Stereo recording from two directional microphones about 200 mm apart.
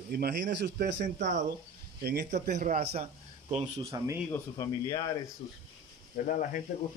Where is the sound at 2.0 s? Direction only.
50° right (ahead or behind); by 3.8 s 35° right (ahead or behind).